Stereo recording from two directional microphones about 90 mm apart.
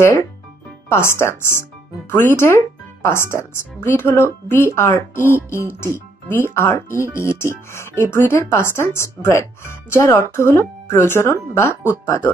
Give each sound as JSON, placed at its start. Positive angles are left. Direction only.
{"t": 0.0, "sound": "speech", "side_deg": 30}